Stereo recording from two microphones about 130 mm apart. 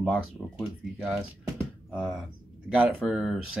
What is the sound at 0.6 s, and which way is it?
Speech, 5° right (ahead or behind).